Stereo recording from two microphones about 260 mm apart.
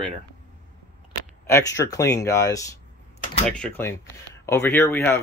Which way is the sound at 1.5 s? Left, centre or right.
Centre.